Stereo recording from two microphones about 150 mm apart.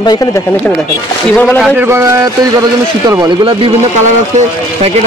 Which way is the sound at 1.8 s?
20° right (ahead or behind).